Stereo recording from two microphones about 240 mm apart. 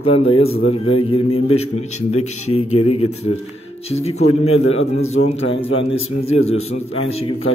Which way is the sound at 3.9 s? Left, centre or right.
Left.